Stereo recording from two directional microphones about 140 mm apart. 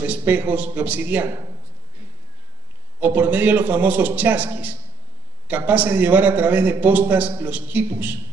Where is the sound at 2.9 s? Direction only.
10° right (ahead or behind).